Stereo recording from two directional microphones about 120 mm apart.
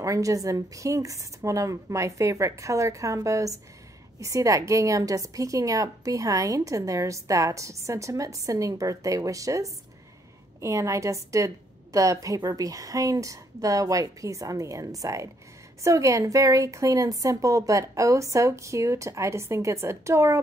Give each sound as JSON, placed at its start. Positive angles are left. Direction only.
{"t": 0.0, "sound": "a woman's voice", "side_deg": -25}